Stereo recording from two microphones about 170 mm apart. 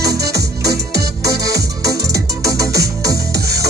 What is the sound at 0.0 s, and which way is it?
Music, 75° right (ahead or behind).